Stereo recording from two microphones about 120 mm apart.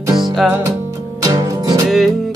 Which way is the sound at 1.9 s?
Centre (ahead or behind).